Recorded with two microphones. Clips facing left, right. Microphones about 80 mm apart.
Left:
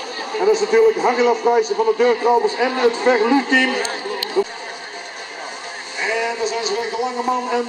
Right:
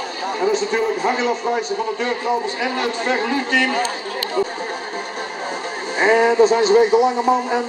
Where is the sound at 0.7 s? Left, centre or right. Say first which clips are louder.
Left 5 dB; centre.